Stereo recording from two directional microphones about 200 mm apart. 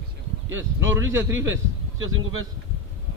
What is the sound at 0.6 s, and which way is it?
Speech, 15° right (ahead or behind).